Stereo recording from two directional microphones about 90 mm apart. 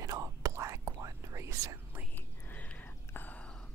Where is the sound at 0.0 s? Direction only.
40° right (ahead or behind).